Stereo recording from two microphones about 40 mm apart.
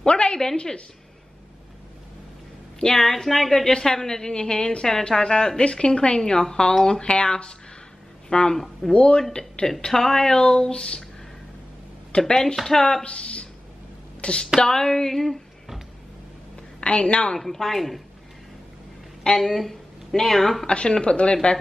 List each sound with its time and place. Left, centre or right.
0.0 s a sound: left
0.6 s a woman's voice: left
2.8 s a woman's voice: centre
3.7 s a woman's voice: centre
12.1 s speech: centre
12.6 s a sound: centre
13.0 s a sound: left
14.2 s a woman's voice: left
14.6 s a sound: centre
16.8 s a woman's voice: left
17.4 s a woman's voice: centre
19.2 s speech: centre
20.6 s a woman's voice: left